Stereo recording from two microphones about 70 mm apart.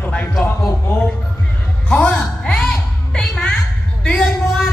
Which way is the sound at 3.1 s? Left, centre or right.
Centre.